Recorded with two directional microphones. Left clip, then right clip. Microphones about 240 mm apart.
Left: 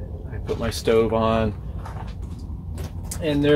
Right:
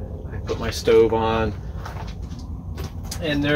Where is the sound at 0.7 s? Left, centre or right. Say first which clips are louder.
Right 4 dB; left.